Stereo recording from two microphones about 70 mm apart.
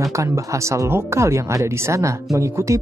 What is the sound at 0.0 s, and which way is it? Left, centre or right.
Speech, right.